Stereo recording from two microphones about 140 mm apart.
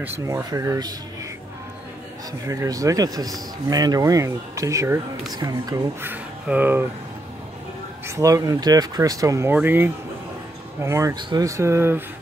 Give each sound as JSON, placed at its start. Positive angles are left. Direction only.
{"t": 0.0, "sound": "speech", "side_deg": -15}
{"t": 2.4, "sound": "speech", "side_deg": -20}
{"t": 6.0, "sound": "speech", "side_deg": -10}
{"t": 8.1, "sound": "speech", "side_deg": -20}
{"t": 11.1, "sound": "speech", "side_deg": -30}